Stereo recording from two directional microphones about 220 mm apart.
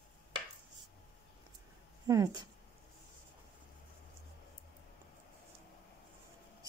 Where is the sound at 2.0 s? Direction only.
15° right (ahead or behind).